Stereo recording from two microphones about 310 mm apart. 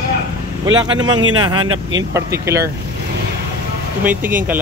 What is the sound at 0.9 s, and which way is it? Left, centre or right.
Speech, centre.